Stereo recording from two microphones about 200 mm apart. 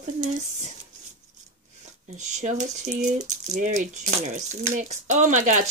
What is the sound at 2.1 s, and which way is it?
Speech, 35° right (ahead or behind).